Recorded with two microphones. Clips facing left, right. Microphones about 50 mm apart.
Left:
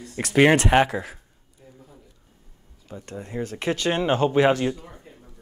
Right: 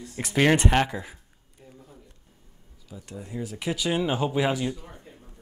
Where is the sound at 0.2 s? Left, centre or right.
Centre.